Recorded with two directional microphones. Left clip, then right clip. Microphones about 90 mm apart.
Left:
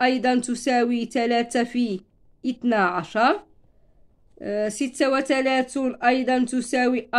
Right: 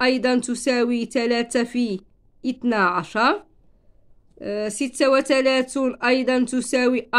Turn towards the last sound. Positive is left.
turn(degrees=-55)  # may be behind; listen again after turning